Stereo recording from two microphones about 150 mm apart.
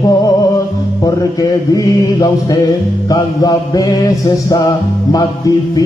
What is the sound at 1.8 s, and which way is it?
Speech, 25° left (ahead or behind).